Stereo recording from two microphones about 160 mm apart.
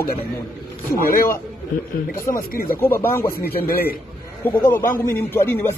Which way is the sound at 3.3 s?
70° left (ahead or behind).